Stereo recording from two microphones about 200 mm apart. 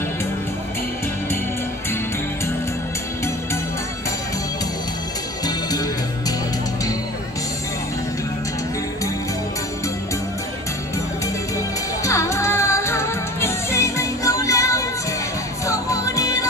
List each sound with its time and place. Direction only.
5.4 s music: 20° left (ahead or behind)
11.5 s music: 15° left (ahead or behind)